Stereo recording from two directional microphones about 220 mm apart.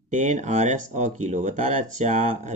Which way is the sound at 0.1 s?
35° right (ahead or behind).